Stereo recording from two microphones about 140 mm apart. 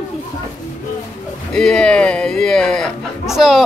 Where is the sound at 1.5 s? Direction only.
5° left (ahead or behind).